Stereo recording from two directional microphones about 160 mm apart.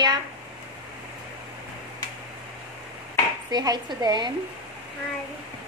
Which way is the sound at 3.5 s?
25° right (ahead or behind).